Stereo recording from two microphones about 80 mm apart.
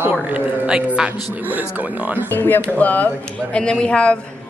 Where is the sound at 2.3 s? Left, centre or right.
Left.